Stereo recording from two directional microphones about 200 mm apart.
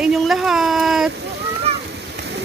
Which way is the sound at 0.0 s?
Centre (ahead or behind).